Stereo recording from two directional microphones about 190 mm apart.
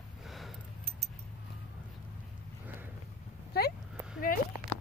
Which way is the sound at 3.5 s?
55° left (ahead or behind).